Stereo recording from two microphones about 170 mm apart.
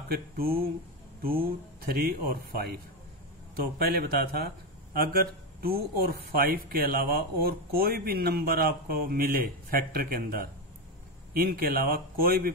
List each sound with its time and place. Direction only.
0.1 s speech: 60° right (ahead or behind)